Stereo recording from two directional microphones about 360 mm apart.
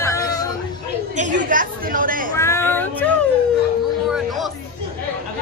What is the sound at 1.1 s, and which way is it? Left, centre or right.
A woman's voice, right.